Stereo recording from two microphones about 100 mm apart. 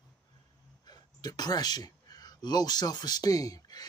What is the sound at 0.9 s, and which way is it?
A man's voice, 45° left (ahead or behind).